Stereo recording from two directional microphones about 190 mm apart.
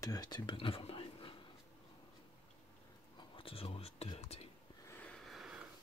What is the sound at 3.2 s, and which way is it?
Whispering, 30° left (ahead or behind).